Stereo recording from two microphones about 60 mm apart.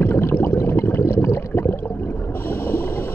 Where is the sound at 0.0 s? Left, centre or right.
Left.